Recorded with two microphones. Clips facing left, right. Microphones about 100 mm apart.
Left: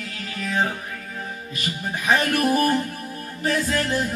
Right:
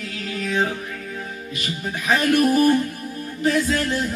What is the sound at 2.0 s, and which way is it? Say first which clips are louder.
Music: right 2 dB; 30° left (ahead or behind).